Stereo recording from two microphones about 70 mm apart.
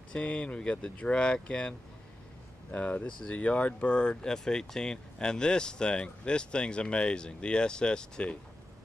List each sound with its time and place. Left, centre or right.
0.1 s speech: centre